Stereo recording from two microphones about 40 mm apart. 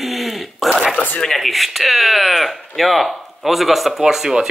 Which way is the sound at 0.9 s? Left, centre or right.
Left.